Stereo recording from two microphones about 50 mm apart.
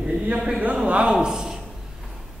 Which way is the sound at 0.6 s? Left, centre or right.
Right.